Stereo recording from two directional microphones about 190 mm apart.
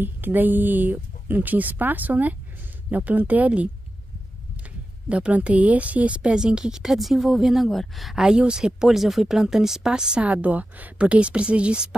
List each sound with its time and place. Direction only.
0.0 s speech: 10° right (ahead or behind)
5.1 s a woman's voice: 5° right (ahead or behind)